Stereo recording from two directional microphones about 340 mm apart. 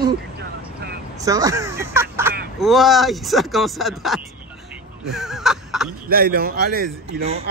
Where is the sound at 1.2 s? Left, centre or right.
Centre.